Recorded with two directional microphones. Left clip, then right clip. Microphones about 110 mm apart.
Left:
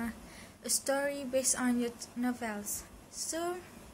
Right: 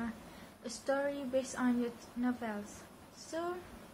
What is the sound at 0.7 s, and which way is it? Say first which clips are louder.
A woman's voice: left 3 dB; 35° left (ahead or behind).